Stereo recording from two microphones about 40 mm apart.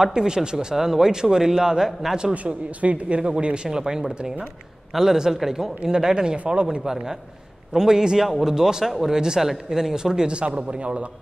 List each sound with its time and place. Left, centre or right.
0.0 s a man's voice: centre
2.3 s speech: right
4.9 s a man's voice: centre
6.8 s a man's voice: centre